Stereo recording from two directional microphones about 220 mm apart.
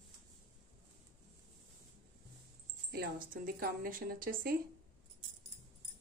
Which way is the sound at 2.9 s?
40° right (ahead or behind).